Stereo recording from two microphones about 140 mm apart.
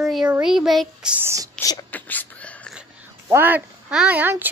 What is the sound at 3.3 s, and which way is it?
Speech, 15° right (ahead or behind).